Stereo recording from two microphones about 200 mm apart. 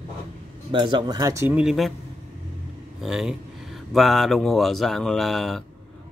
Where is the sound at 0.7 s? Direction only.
25° right (ahead or behind); by 2.0 s centre (ahead or behind).